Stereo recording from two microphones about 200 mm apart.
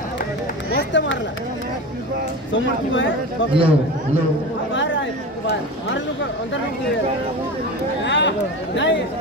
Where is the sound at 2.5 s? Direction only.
70° left (ahead or behind).